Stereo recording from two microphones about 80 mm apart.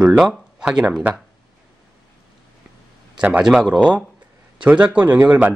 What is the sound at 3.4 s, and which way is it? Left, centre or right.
Speech, centre.